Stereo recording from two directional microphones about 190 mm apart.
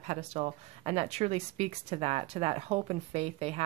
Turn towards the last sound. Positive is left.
turn(degrees=-35)  # may be behind; listen again after turning